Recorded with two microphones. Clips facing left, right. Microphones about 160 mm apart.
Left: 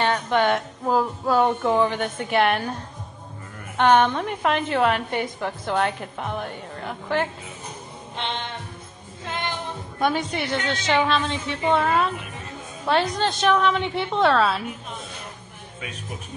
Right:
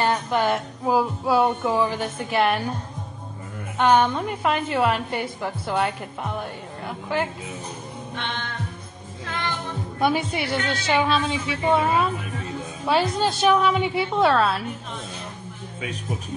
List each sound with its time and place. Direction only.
0.0 s speech: 5° right (ahead or behind)
3.8 s speech: 10° right (ahead or behind)
8.2 s music: 25° left (ahead or behind)
9.9 s a woman's voice: 5° right (ahead or behind)